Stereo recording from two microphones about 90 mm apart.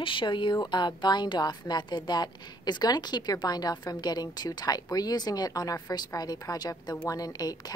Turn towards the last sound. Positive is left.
turn(degrees=45)  # may be behind; listen again after turning